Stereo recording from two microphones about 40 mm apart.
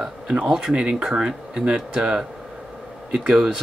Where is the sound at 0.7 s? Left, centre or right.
Right.